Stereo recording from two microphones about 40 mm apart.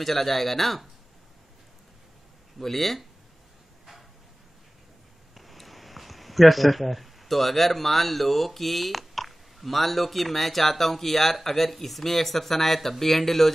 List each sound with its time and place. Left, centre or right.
0.0 s speech: centre
2.6 s speech: centre
5.3 s speech: centre